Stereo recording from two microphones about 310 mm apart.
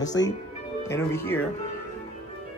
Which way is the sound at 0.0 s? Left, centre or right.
Centre.